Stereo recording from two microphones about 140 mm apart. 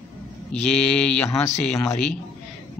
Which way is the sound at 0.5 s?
10° left (ahead or behind).